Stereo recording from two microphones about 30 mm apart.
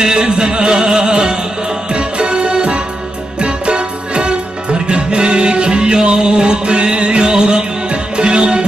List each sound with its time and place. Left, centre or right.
0.0 s music: right